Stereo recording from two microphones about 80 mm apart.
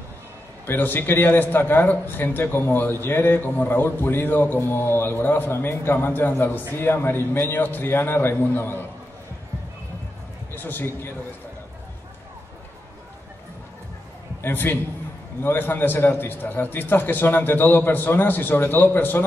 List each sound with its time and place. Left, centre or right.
0.7 s a man's voice: left
10.5 s a man's voice: left
14.4 s a man's voice: left